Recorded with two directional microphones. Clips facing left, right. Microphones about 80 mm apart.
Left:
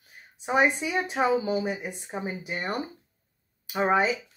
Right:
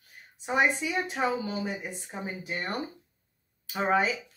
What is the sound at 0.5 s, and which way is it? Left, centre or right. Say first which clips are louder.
Speech: left 3 dB; centre.